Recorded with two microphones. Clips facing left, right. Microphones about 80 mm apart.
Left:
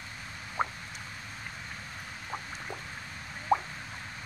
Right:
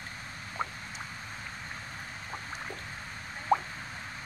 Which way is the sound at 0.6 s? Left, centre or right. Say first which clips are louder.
Left 4 dB; left.